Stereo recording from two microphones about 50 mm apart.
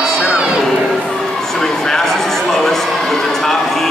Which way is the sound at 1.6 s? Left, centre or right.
Centre.